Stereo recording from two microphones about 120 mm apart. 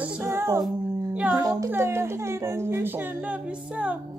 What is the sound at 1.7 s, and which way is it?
A woman's voice, 20° right (ahead or behind).